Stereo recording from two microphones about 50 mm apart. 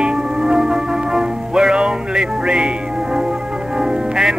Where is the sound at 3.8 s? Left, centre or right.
Centre.